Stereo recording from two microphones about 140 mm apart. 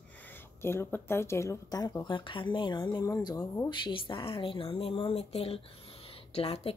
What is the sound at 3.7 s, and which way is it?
A woman's voice, 35° left (ahead or behind).